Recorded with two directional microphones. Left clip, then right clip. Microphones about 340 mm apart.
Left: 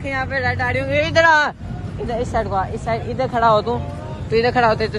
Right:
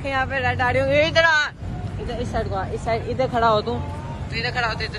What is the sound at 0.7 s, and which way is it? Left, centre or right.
Speech, centre.